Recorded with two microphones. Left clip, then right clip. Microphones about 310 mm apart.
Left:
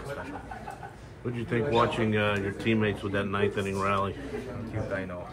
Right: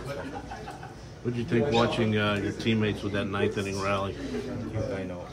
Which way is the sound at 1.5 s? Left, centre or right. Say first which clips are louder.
Even; left.